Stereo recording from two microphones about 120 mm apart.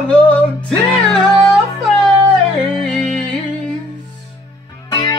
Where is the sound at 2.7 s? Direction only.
10° left (ahead or behind).